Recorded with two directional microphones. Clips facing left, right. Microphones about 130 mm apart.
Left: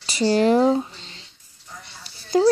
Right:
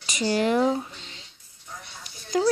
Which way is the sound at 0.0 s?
35° left (ahead or behind).